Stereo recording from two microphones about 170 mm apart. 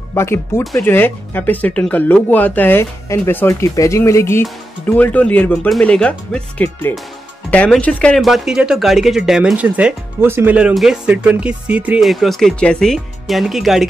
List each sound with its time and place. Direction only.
0.1 s speech: 15° left (ahead or behind); by 13.8 s centre (ahead or behind)